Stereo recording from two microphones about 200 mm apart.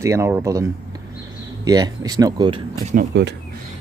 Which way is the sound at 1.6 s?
20° right (ahead or behind).